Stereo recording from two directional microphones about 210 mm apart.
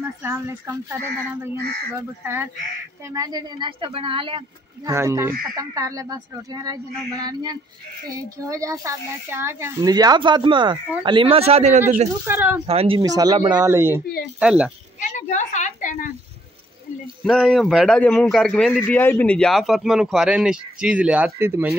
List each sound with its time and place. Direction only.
0.2 s speech: 10° right (ahead or behind)
2.0 s speech: 10° right (ahead or behind)
4.9 s speech: 15° right (ahead or behind); by 12.1 s 35° right (ahead or behind)
12.3 s speech: 10° right (ahead or behind)
12.6 s a man's voice: 25° right (ahead or behind); by 14.7 s 5° right (ahead or behind)
15.0 s a woman's voice: 35° left (ahead or behind)
17.2 s a man's voice: centre (ahead or behind)